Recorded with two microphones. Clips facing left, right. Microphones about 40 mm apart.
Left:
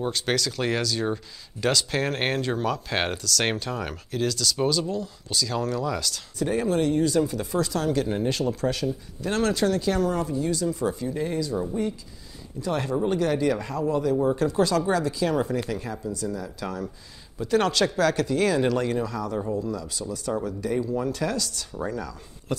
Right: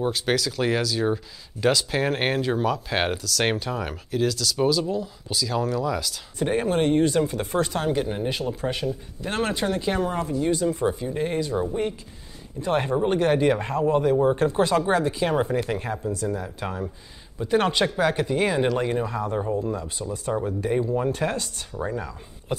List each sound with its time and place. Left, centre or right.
0.0 s speech: centre
6.3 s speech: right
7.9 s speech: centre